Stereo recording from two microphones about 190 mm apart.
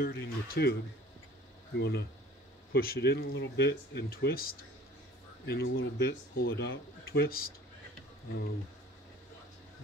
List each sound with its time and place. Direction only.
0.0 s speech: 55° left (ahead or behind)
1.8 s speech: 60° left (ahead or behind)
5.5 s speech: 75° left (ahead or behind)
6.0 s speech: 55° left (ahead or behind)